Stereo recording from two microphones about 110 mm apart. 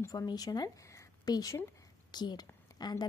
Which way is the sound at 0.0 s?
35° left (ahead or behind).